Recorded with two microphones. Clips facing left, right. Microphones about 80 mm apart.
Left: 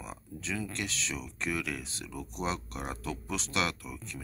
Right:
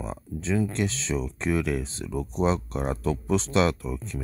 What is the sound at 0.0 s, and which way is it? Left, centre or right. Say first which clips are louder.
Speech: right 9 dB; right.